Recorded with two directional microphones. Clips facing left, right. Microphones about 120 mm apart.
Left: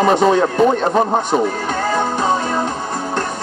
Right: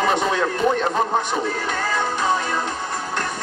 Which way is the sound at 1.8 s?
35° left (ahead or behind).